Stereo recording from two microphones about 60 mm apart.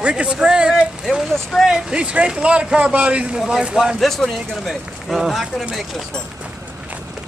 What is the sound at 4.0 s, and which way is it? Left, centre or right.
Speech, centre.